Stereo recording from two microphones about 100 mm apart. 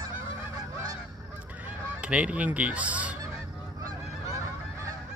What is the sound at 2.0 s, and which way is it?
Speech, 15° right (ahead or behind).